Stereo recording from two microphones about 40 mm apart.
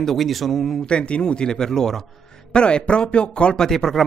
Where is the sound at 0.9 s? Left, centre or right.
Left.